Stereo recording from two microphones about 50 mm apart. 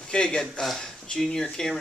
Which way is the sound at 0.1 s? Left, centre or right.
Centre.